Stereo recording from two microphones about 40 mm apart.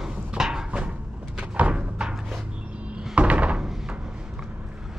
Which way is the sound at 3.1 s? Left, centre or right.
Right.